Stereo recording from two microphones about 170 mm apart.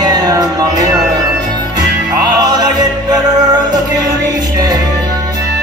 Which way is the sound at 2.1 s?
25° right (ahead or behind).